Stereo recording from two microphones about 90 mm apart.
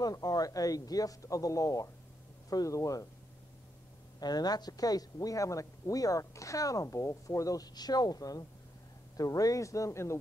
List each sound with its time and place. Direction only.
0.0 s speech: 45° left (ahead or behind)
4.2 s speech: 50° left (ahead or behind); by 10.1 s 35° left (ahead or behind)